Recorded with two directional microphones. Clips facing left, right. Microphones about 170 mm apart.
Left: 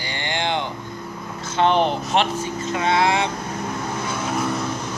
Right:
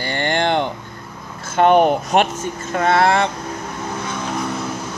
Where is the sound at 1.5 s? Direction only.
50° right (ahead or behind).